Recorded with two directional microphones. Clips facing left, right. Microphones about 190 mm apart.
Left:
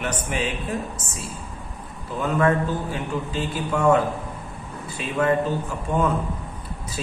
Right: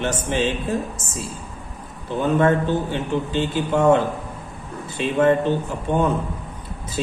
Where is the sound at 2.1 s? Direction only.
25° right (ahead or behind).